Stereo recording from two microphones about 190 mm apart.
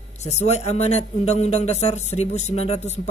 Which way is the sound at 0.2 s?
35° left (ahead or behind).